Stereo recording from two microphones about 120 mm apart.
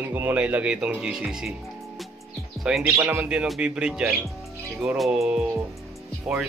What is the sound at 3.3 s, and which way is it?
Speech, 5° right (ahead or behind).